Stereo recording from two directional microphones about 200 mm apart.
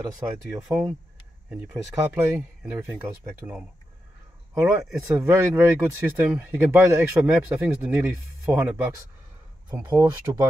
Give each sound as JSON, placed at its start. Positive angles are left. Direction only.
{"t": 0.0, "sound": "speech", "side_deg": -20}
{"t": 3.4, "sound": "speech", "side_deg": -20}
{"t": 4.6, "sound": "speech", "side_deg": 0}
{"t": 5.0, "sound": "speech", "side_deg": -15}